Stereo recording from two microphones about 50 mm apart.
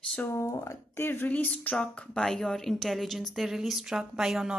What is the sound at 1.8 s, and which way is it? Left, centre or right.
A woman's voice, centre.